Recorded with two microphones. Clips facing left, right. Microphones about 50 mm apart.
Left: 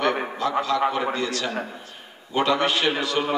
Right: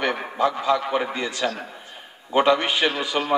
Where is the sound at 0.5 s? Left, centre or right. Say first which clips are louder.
Left 3 dB; centre.